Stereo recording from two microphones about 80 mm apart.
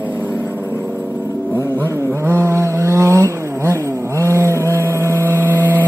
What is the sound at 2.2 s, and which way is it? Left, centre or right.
Vehicle, right.